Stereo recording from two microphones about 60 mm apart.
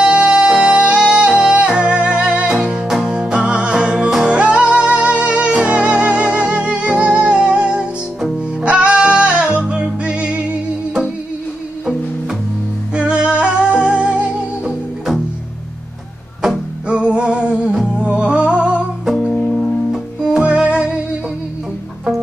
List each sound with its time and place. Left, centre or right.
0.0 s music: centre
12.9 s music: centre
16.8 s music: centre
19.1 s music: centre
19.9 s music: centre